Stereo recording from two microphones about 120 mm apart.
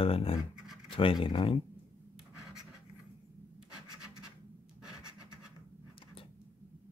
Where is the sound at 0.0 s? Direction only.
50° left (ahead or behind).